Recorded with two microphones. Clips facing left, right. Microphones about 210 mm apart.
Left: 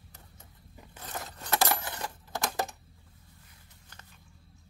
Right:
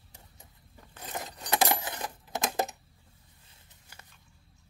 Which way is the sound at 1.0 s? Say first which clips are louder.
Right 1 dB; 15° right (ahead or behind).